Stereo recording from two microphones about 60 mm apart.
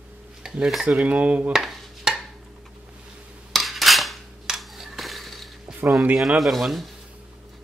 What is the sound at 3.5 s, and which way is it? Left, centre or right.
Dishes, centre.